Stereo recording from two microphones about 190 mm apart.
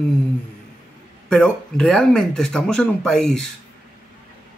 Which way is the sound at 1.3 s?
5° left (ahead or behind).